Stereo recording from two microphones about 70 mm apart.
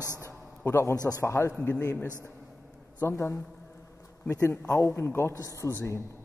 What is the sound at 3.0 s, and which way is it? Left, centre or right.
A man's voice, left.